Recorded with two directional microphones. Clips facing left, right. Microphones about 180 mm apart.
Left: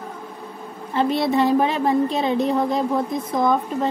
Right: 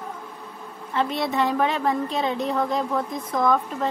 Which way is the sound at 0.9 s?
30° left (ahead or behind).